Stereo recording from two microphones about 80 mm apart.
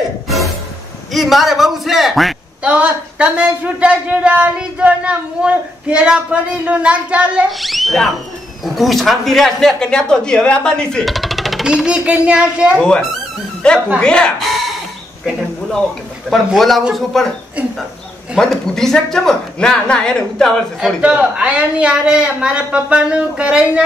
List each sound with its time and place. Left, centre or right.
1.1 s speech: centre
2.6 s a man's voice: centre
7.5 s speech: centre
13.9 s speech: centre
14.5 s chicken: centre
16.5 s speech: centre
17.6 s a man's voice: centre
18.4 s speech: centre
21.0 s a man's voice: centre